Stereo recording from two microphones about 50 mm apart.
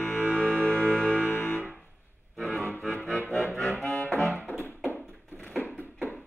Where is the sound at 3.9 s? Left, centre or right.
Left.